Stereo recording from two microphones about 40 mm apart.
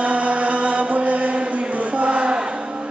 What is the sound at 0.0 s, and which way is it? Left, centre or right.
Chant, right.